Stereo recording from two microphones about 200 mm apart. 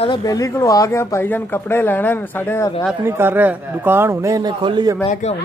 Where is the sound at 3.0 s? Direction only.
10° right (ahead or behind).